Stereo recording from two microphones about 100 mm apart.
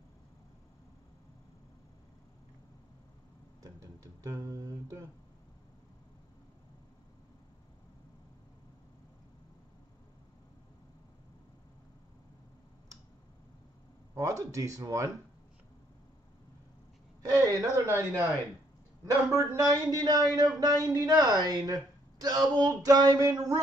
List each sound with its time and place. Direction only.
3.6 s speech: 35° right (ahead or behind)
14.1 s speech: 35° right (ahead or behind)
17.2 s speech: 35° right (ahead or behind)
19.3 s speech: 30° right (ahead or behind)